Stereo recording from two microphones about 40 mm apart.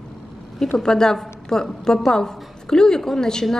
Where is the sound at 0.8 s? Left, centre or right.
Centre.